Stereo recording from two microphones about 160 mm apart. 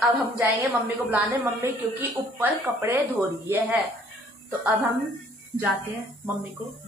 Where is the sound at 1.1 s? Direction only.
10° right (ahead or behind).